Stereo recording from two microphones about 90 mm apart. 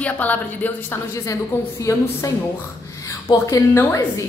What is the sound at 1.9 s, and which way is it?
Speech, 35° left (ahead or behind).